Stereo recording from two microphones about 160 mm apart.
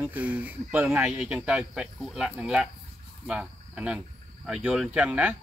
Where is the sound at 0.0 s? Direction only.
10° right (ahead or behind).